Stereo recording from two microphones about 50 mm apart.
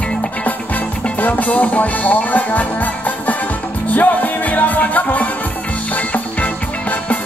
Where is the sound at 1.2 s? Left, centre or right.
Left.